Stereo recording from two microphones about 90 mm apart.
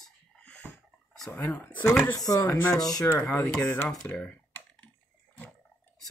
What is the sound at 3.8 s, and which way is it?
Computer keyboard, 10° left (ahead or behind).